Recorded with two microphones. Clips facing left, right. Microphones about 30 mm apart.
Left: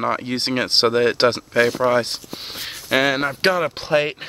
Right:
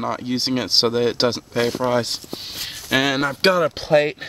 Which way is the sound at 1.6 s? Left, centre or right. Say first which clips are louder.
Left 3 dB; left.